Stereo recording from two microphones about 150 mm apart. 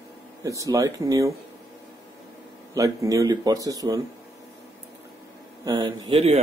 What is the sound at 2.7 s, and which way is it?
Speech, 20° right (ahead or behind).